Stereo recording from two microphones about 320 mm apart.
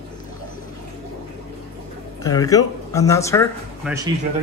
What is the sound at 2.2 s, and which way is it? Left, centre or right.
Speech, centre.